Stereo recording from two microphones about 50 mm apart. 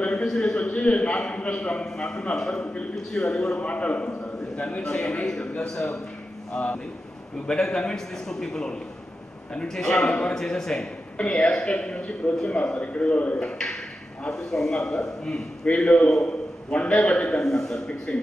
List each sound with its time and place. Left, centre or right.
0.1 s a man's voice: centre
6.5 s a man's voice: left
11.1 s a man's voice: left
17.4 s a man's voice: centre